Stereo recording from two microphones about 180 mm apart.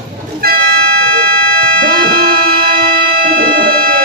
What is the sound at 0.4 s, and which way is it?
Toot, 55° right (ahead or behind).